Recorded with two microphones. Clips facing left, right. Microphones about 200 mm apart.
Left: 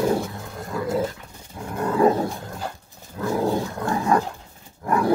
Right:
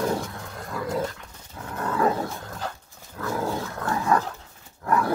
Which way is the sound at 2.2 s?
10° left (ahead or behind).